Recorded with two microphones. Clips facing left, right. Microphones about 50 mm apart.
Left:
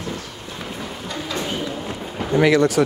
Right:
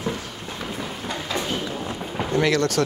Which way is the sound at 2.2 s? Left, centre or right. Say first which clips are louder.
Left 5 dB; centre.